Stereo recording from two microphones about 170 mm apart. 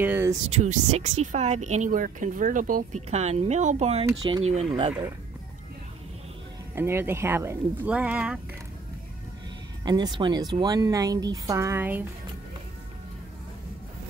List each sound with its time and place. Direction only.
0.0 s a sound: 15° right (ahead or behind)
0.5 s a woman's voice: 40° right (ahead or behind)
4.2 s speech: 25° right (ahead or behind)
6.7 s speech: 15° right (ahead or behind)
9.8 s speech: 25° right (ahead or behind)